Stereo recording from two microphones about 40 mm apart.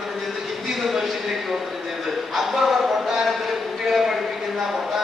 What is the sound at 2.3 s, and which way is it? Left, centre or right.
Music, centre.